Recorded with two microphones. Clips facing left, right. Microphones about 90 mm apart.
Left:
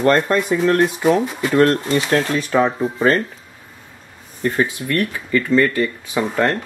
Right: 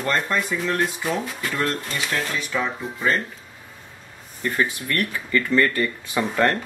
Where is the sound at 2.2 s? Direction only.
35° left (ahead or behind).